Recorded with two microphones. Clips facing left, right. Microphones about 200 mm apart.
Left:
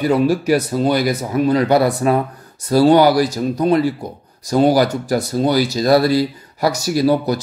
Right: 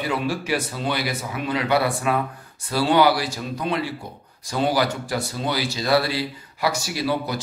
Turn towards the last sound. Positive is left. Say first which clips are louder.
# left 9 dB
turn(degrees=40)  # may be behind; listen again after turning